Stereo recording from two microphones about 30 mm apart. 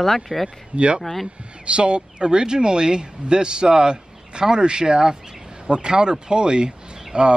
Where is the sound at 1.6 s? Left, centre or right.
Right.